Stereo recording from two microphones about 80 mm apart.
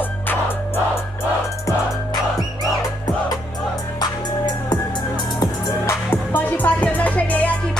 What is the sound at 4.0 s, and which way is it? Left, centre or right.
Music, left.